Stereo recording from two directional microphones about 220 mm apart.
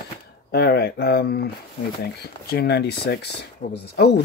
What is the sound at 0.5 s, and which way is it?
Speech, 45° left (ahead or behind).